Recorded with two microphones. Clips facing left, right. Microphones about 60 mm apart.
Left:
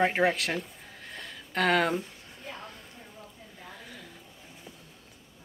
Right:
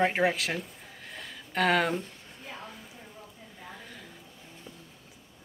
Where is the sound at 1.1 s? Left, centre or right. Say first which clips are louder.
Even; centre.